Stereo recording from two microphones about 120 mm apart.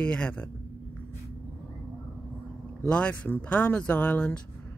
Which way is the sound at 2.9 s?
10° left (ahead or behind).